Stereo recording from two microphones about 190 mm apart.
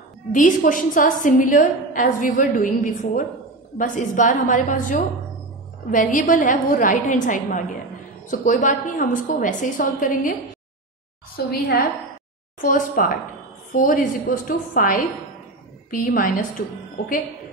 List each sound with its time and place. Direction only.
0.3 s a woman's voice: 45° left (ahead or behind)
11.4 s a woman's voice: 55° left (ahead or behind)
12.6 s a woman's voice: 45° left (ahead or behind)